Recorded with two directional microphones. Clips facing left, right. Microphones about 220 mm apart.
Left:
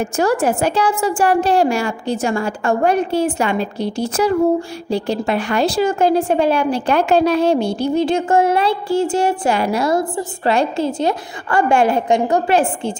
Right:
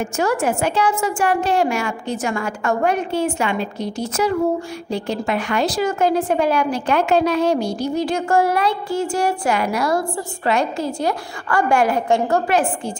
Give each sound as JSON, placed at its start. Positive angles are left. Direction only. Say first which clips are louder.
{"t": 0.0, "sound": "a woman's voice", "louder": "left 3 dB", "side_deg": 35}
{"t": 12.4, "sound": "a woman's voice", "louder": "left 3 dB", "side_deg": 30}